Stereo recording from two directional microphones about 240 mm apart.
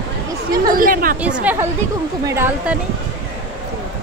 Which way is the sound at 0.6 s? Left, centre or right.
Right.